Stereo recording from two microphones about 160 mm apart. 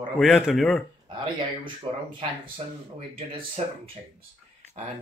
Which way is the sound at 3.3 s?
35° right (ahead or behind).